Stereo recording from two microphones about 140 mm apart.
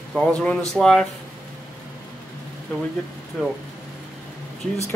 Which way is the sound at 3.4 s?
5° left (ahead or behind).